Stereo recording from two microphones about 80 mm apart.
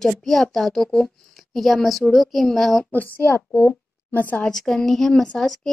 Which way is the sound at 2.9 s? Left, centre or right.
Left.